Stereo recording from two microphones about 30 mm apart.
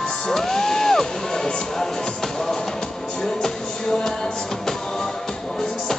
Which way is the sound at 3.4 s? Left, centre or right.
Centre.